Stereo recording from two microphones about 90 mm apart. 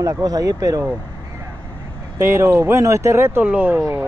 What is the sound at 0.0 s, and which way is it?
Speech, 40° right (ahead or behind).